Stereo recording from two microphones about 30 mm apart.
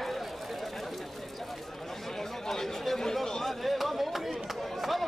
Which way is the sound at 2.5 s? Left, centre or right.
Centre.